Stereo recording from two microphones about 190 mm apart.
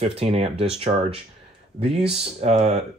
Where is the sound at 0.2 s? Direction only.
30° right (ahead or behind).